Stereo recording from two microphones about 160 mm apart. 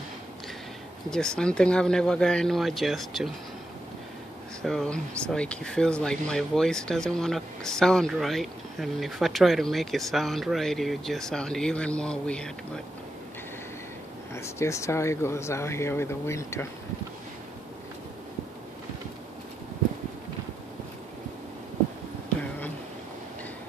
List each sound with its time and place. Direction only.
1.1 s speech: 5° left (ahead or behind)
4.6 s speech: 5° left (ahead or behind)
14.3 s speech: 15° left (ahead or behind)